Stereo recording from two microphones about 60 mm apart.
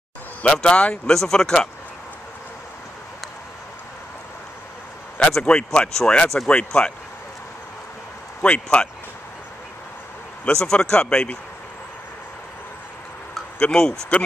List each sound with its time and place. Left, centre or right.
0.4 s speech: centre
5.4 s speech: centre
8.4 s a man's voice: left
10.4 s speech: centre
13.6 s speech: centre